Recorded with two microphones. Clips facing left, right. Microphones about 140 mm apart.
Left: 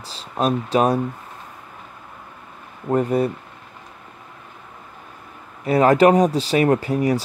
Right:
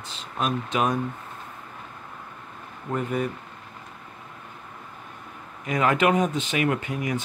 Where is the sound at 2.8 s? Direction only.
35° left (ahead or behind).